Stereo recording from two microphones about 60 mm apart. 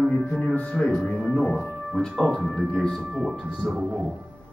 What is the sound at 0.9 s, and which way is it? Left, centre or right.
Speech, centre.